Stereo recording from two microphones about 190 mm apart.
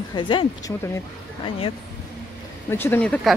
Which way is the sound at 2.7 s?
10° left (ahead or behind).